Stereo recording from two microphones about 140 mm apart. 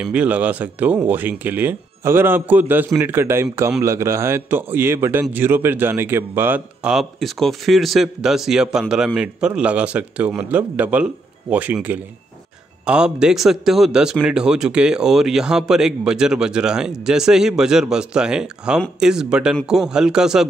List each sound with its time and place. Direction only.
0.0 s a man's voice: 10° right (ahead or behind)